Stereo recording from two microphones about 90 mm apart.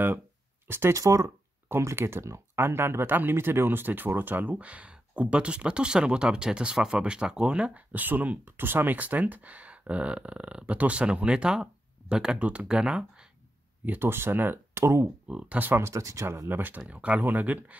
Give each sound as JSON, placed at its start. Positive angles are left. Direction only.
{"t": 0.7, "sound": "speech", "side_deg": -30}
{"t": 13.8, "sound": "speech", "side_deg": -25}
{"t": 15.2, "sound": "speech", "side_deg": -15}
{"t": 15.8, "sound": "speech", "side_deg": -35}
{"t": 16.4, "sound": "speech", "side_deg": -20}